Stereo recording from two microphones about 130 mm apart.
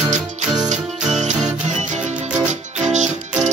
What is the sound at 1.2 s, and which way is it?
Music, 65° right (ahead or behind).